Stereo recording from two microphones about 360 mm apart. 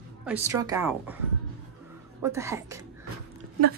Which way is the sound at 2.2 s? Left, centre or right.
Centre.